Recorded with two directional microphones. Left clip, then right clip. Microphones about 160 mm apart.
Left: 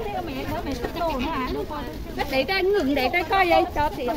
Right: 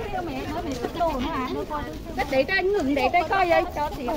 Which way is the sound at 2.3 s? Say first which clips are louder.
Even; 55° left (ahead or behind).